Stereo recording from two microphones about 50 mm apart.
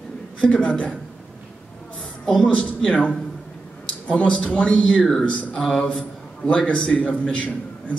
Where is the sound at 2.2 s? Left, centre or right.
Centre.